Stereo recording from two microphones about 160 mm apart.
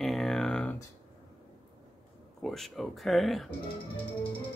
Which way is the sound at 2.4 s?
Centre (ahead or behind).